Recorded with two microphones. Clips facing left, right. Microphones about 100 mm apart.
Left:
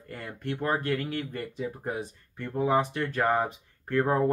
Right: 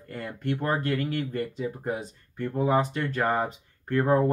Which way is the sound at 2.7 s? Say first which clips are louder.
Even; 15° left (ahead or behind).